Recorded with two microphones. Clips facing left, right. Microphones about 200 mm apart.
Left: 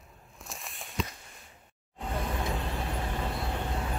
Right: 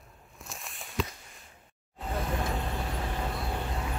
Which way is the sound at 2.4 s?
Centre (ahead or behind).